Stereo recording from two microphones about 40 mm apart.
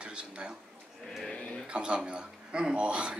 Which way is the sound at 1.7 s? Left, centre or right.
Right.